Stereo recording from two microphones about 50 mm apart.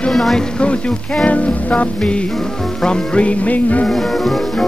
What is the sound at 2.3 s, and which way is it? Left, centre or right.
Music, centre.